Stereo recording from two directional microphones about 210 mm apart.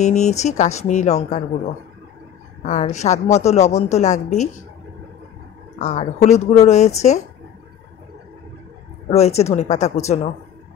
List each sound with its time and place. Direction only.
0.0 s a woman's voice: 35° left (ahead or behind)
2.6 s a woman's voice: 35° left (ahead or behind)
5.8 s a woman's voice: 35° left (ahead or behind)
9.1 s a woman's voice: 30° left (ahead or behind)